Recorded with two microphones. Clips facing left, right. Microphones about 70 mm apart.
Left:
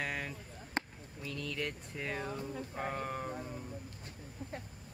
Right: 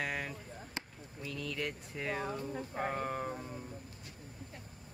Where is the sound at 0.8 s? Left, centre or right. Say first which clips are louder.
Left 8 dB; left.